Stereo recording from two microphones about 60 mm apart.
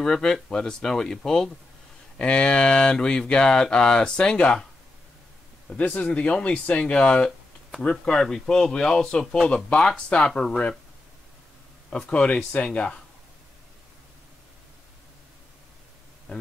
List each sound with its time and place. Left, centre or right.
0.0 s speech: centre
5.7 s speech: left
11.9 s speech: centre